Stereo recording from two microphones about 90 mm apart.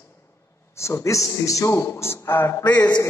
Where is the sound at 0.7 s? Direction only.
30° left (ahead or behind).